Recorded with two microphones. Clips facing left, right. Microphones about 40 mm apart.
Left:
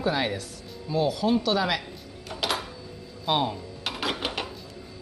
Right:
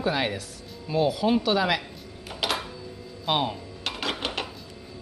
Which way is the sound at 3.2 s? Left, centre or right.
Centre.